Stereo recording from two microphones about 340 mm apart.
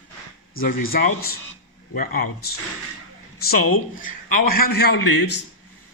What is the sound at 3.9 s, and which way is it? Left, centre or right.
A man's voice, left.